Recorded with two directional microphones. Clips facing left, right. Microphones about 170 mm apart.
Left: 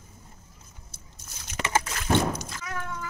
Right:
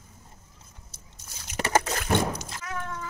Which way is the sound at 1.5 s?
40° right (ahead or behind).